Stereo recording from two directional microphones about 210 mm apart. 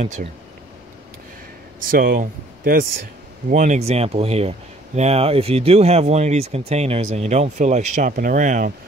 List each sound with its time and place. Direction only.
0.0 s speech: 30° right (ahead or behind)
1.9 s speech: 45° right (ahead or behind)